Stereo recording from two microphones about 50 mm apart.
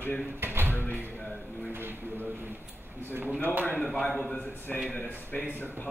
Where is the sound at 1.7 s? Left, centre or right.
Right.